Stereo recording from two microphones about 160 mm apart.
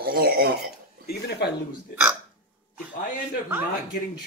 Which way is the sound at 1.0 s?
90° left.